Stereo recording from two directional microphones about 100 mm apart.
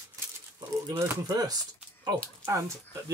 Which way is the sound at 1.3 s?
40° right (ahead or behind).